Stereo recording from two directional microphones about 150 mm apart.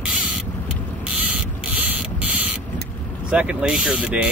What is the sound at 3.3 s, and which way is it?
Speech, 5° right (ahead or behind).